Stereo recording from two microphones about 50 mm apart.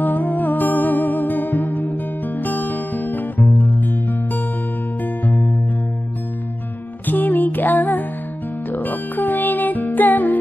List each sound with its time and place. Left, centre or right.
0.0 s music: left
7.1 s music: left